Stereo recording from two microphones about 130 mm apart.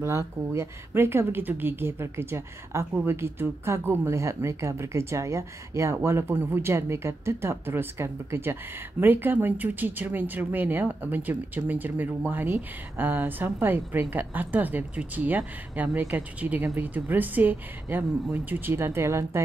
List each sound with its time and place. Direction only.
0.0 s speech: 20° right (ahead or behind)